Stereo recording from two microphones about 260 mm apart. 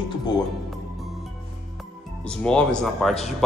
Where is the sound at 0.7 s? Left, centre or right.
Centre.